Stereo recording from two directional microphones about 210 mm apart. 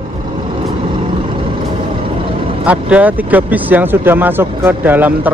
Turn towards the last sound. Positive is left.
turn(degrees=-10)  # may be behind; listen again after turning